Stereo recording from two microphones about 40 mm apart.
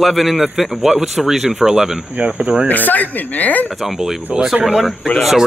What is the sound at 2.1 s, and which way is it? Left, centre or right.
Speech, right.